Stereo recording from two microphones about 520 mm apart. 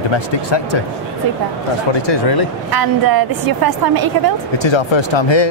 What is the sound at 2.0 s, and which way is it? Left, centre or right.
Speech, left.